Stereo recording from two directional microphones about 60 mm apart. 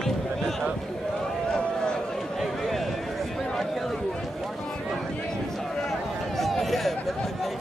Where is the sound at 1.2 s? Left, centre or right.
Centre.